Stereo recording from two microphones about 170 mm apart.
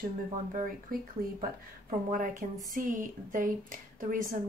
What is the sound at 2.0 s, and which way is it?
Speech, 55° right (ahead or behind).